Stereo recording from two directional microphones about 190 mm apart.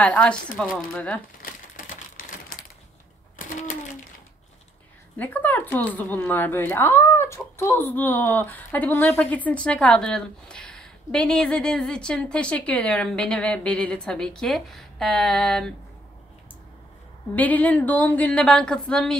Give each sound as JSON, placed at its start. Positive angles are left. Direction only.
{"t": 0.0, "sound": "speech", "side_deg": 5}
{"t": 1.4, "sound": "typewriter", "side_deg": 45}
{"t": 3.3, "sound": "a sound", "side_deg": 45}
{"t": 5.1, "sound": "speech", "side_deg": 10}
{"t": 17.4, "sound": "speech", "side_deg": 10}